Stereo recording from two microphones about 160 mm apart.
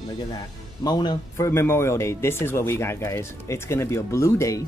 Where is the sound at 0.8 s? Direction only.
25° left (ahead or behind).